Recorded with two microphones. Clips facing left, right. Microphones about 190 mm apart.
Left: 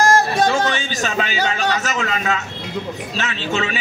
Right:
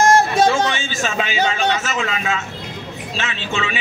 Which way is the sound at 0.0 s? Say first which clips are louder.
Right 2 dB; 25° right (ahead or behind).